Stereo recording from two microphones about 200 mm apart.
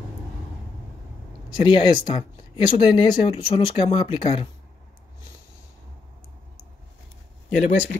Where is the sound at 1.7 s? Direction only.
25° left (ahead or behind).